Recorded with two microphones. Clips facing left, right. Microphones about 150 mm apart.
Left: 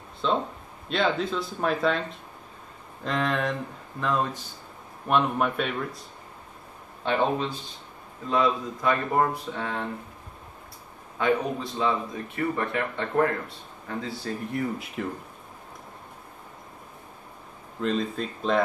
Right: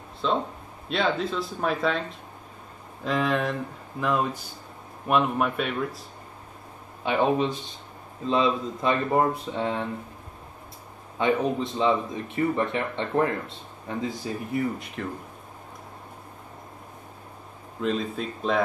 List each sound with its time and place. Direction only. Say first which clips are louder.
0.2 s speech: even; centre (ahead or behind)
7.1 s speech: right 2 dB; 15° right (ahead or behind)
11.1 s speech: right 1 dB; 20° right (ahead or behind)
14.5 s speech: right 4 dB; centre (ahead or behind)
17.8 s speech: even; centre (ahead or behind)